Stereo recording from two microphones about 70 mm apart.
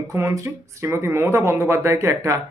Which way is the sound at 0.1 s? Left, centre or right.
Right.